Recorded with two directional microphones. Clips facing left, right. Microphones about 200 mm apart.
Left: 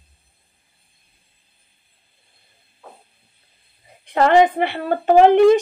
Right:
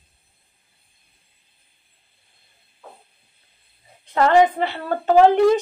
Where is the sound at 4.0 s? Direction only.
15° left (ahead or behind).